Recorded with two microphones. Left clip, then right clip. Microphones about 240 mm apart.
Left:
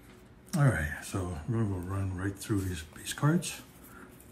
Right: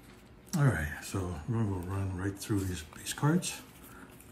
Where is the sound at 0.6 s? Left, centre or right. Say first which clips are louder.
Left 2 dB; centre.